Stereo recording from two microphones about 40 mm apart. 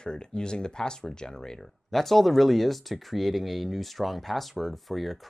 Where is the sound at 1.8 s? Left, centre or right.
Centre.